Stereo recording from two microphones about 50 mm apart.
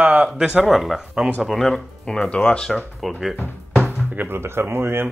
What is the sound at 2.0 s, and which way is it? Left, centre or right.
Speech, left.